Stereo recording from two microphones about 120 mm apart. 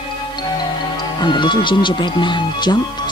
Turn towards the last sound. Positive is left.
turn(degrees=40)  # may be behind; listen again after turning